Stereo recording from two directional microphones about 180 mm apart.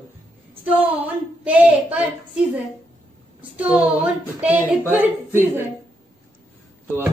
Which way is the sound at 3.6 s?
5° right (ahead or behind).